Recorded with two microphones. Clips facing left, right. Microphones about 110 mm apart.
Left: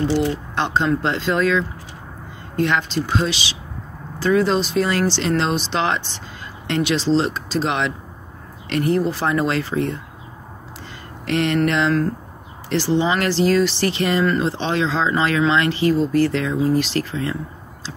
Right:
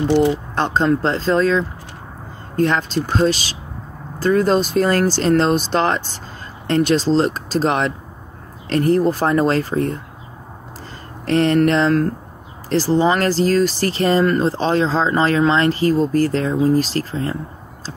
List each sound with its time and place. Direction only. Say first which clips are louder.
0.6 s speech: right 1 dB; 40° right (ahead or behind)
11.2 s speech: right 4 dB; 40° right (ahead or behind)